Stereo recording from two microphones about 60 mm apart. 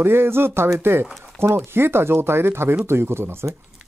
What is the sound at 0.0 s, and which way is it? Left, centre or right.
Speech, right.